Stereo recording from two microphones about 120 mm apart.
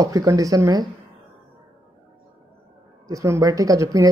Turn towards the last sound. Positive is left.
turn(degrees=-30)  # may be behind; listen again after turning